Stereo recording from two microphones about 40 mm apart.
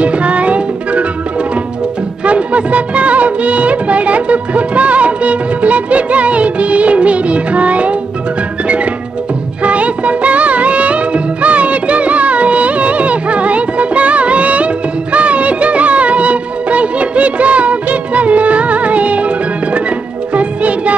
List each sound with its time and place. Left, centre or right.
0.0 s music: right
2.2 s music of bollywood: right
9.6 s music: right
15.1 s music of bollywood: right
20.3 s music: right